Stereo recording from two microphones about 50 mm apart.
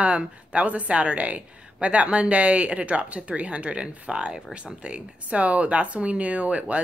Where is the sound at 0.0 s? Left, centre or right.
Right.